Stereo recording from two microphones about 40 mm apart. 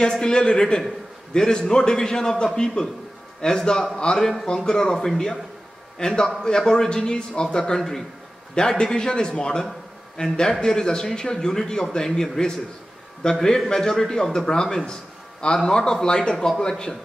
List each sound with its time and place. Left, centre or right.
0.0 s a man's voice: centre
4.5 s a man's voice: centre